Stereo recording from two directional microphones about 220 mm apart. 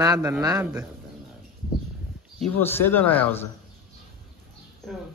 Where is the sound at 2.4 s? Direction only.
10° left (ahead or behind).